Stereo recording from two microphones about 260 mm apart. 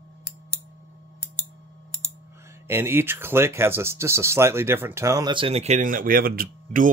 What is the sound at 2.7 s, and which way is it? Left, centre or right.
Speech, centre.